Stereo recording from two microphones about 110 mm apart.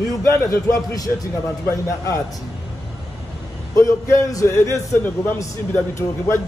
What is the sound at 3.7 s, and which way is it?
A man's voice, 30° left (ahead or behind).